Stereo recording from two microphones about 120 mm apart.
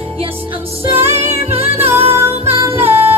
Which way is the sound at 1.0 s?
20° right (ahead or behind).